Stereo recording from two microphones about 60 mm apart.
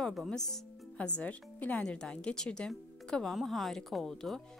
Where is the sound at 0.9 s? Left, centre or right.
Left.